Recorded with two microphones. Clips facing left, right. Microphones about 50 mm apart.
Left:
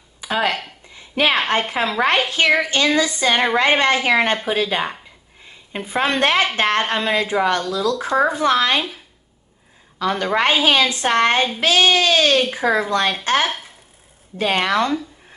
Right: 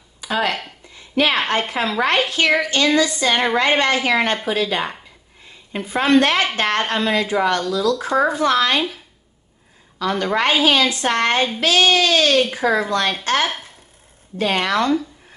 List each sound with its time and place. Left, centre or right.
0.2 s speech: centre
0.9 s a sound: left
1.6 s a woman's voice: centre
9.9 s a woman's voice: left
12.4 s a woman's voice: centre